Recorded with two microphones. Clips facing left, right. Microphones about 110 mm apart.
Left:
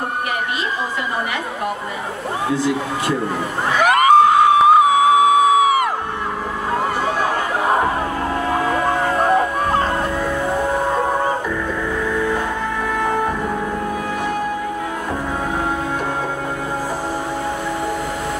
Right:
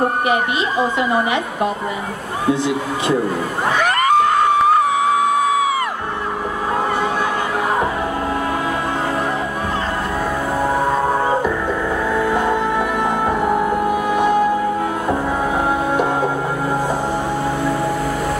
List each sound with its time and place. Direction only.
2.5 s speech: 20° right (ahead or behind)
3.8 s music: 10° left (ahead or behind)
13.4 s music: 15° right (ahead or behind)